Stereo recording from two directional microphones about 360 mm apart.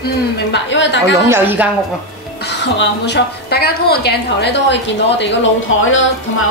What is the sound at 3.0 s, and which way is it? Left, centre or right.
A woman's voice, left.